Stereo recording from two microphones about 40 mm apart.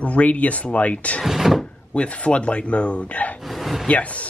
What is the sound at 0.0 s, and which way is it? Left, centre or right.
A man's voice, left.